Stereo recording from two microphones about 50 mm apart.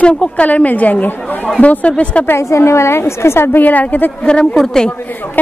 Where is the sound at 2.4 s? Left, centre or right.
Left.